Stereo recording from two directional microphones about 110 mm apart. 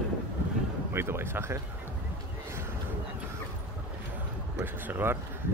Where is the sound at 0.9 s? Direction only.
20° right (ahead or behind).